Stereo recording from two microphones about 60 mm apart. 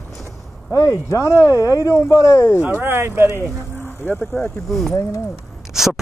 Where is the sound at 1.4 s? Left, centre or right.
Left.